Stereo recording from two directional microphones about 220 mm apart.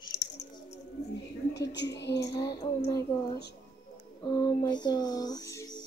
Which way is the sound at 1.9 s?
50° left (ahead or behind).